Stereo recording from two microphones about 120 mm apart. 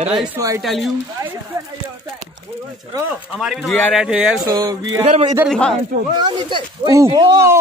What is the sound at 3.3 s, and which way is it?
Speech, centre (ahead or behind).